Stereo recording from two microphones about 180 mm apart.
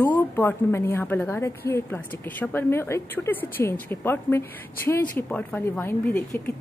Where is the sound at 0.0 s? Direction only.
10° left (ahead or behind).